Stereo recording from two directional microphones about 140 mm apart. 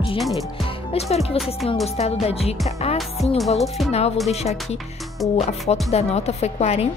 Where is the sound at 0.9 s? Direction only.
45° left (ahead or behind).